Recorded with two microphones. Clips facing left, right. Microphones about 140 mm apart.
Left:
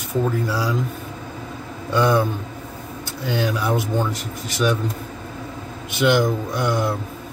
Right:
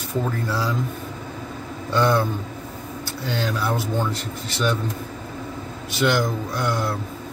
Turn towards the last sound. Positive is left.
turn(degrees=15)  # may be behind; listen again after turning